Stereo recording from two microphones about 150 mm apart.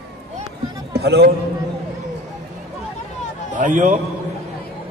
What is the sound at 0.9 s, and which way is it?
Speech, 90° right.